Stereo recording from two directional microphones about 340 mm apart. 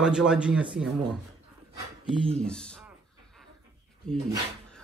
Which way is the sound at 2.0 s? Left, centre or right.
Centre.